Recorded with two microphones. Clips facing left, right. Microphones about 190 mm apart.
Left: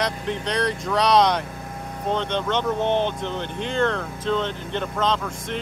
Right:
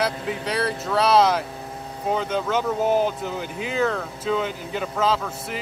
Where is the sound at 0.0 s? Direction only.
5° right (ahead or behind).